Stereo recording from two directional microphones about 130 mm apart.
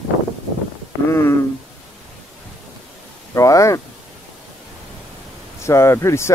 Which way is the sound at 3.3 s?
25° left (ahead or behind).